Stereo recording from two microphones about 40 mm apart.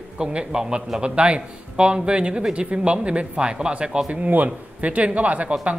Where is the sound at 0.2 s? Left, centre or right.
Right.